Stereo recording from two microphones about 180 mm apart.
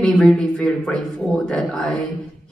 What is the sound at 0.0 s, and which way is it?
A woman's voice, 5° left (ahead or behind).